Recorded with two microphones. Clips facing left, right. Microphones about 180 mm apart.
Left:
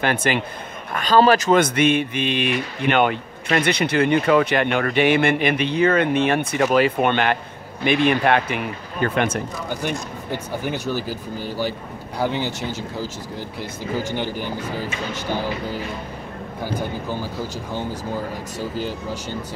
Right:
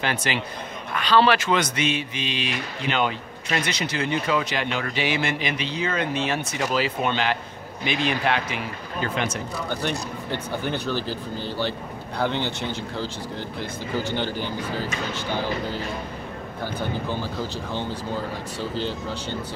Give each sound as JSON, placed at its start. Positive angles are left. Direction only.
{"t": 0.0, "sound": "a man's voice", "side_deg": 50}
{"t": 9.7, "sound": "speech", "side_deg": 10}
{"t": 16.6, "sound": "speech", "side_deg": 10}